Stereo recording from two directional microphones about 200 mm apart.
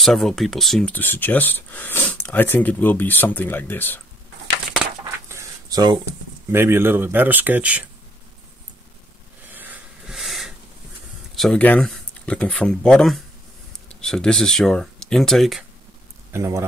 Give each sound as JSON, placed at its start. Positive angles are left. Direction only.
{"t": 0.0, "sound": "speech", "side_deg": 0}
{"t": 5.3, "sound": "a sound", "side_deg": -15}
{"t": 6.5, "sound": "speech", "side_deg": -10}
{"t": 9.5, "sound": "a sound", "side_deg": -10}
{"t": 11.3, "sound": "speech", "side_deg": 5}
{"t": 16.3, "sound": "speech", "side_deg": -15}